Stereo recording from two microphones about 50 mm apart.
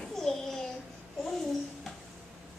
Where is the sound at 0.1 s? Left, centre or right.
Centre.